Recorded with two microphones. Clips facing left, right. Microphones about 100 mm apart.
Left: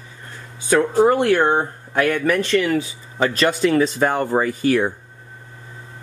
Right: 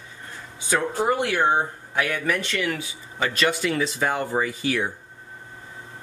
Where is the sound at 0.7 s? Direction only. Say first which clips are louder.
Left 8 dB; 50° left (ahead or behind).